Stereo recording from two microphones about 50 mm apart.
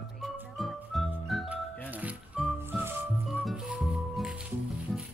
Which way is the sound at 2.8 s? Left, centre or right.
Right.